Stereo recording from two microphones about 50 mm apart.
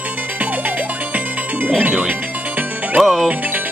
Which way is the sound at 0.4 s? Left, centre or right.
Right.